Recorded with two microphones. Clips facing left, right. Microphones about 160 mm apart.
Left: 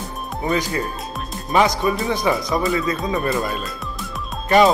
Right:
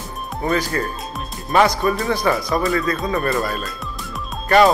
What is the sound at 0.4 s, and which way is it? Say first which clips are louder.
Speech: right 1 dB; 15° left (ahead or behind).